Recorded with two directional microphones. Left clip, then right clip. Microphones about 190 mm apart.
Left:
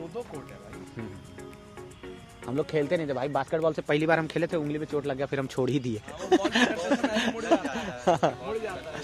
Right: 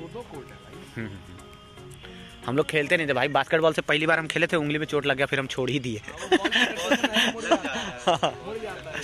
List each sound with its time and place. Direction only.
2.4 s speech: 15° right (ahead or behind)
3.9 s speech: centre (ahead or behind)
5.5 s speech: 20° left (ahead or behind)